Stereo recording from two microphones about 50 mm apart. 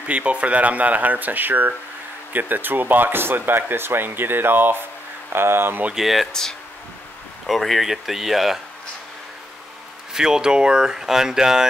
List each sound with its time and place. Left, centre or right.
0.0 s speech: right
5.9 s speech: centre
7.4 s speech: centre
10.1 s speech: centre